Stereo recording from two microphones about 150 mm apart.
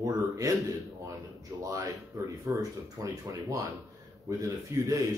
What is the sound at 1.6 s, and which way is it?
Speech, 20° right (ahead or behind).